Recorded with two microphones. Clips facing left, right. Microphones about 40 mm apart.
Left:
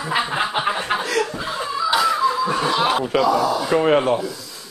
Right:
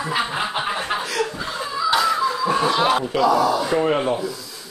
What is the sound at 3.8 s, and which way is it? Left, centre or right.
Speech, left.